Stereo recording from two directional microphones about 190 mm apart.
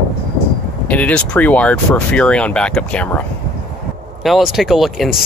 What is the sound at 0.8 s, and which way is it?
Speech, 5° left (ahead or behind).